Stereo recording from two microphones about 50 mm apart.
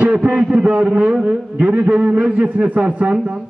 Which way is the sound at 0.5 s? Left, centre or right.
Right.